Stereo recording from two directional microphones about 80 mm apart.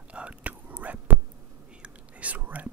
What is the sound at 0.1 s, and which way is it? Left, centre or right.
Whispering, centre.